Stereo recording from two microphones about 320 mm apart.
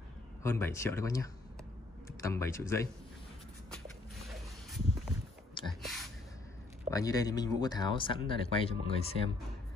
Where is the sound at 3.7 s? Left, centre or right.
Centre.